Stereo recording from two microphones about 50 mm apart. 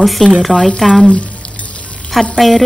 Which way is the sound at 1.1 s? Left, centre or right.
Left.